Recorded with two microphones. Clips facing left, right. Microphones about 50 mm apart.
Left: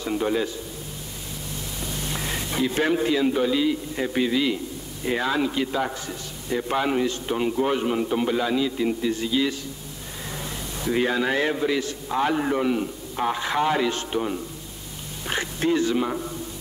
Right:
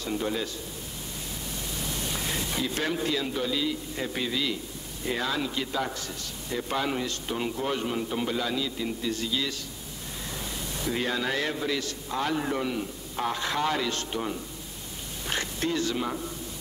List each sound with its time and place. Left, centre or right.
0.0 s a man's voice: left
2.1 s a man's voice: left
10.9 s a man's voice: left
15.2 s speech: centre